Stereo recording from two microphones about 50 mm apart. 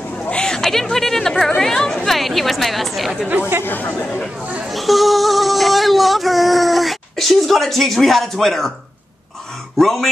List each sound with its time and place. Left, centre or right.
0.3 s chatter: centre
1.6 s a woman's voice: centre
2.0 s chatter: centre
3.3 s speech: right
3.6 s speech: left
4.6 s a sound: centre
9.8 s speech: centre